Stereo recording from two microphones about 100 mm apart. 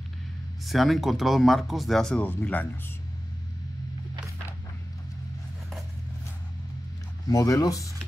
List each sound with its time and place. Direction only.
0.7 s speech: centre (ahead or behind)
2.2 s speech: 15° left (ahead or behind)
7.2 s speech: 35° left (ahead or behind)